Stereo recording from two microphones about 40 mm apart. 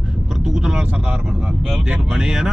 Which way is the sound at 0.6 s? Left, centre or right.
Centre.